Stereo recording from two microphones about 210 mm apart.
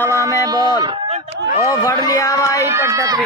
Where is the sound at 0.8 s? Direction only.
25° right (ahead or behind).